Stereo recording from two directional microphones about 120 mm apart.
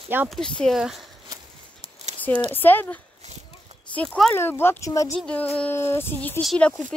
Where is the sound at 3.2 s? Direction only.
65° right (ahead or behind).